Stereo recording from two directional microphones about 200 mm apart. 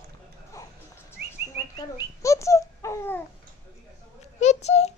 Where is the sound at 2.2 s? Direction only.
15° left (ahead or behind).